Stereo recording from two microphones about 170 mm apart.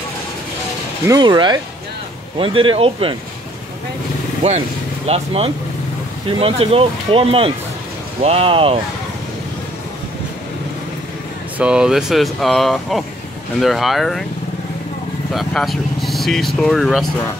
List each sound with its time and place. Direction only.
1.0 s speech: 25° right (ahead or behind)
5.0 s speech: 35° right (ahead or behind)
11.5 s speech: 5° right (ahead or behind)
15.3 s speech: centre (ahead or behind)